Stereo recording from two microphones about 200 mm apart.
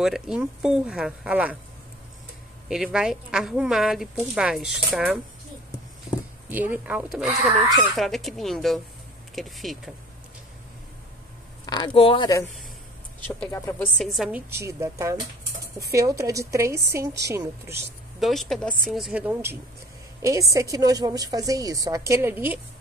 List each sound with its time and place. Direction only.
0.0 s speech: centre (ahead or behind)
2.7 s speech: 5° right (ahead or behind)
6.5 s a woman's voice: 10° right (ahead or behind)
11.6 s speech: 20° left (ahead or behind); by 14.4 s centre (ahead or behind)
14.5 s a woman's voice: 15° right (ahead or behind)
18.2 s a woman's voice: centre (ahead or behind)